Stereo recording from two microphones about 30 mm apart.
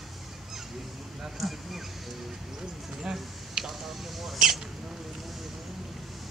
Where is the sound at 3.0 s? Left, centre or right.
Centre.